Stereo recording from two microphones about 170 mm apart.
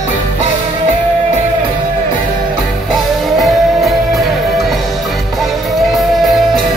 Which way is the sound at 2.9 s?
Centre (ahead or behind).